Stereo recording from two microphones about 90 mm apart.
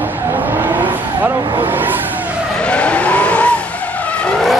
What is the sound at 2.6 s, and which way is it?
Vehicle, 10° left (ahead or behind).